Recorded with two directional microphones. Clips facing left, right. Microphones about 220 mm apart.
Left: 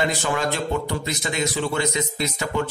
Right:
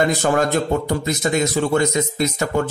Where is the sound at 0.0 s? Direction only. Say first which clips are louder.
Right 6 dB; 45° right (ahead or behind).